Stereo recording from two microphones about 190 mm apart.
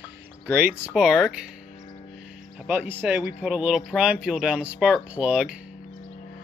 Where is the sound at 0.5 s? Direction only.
10° right (ahead or behind).